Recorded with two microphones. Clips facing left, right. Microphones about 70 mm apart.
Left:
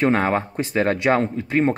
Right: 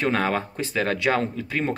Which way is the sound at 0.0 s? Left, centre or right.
Left.